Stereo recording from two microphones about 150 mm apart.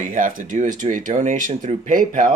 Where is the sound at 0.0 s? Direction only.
60° right (ahead or behind).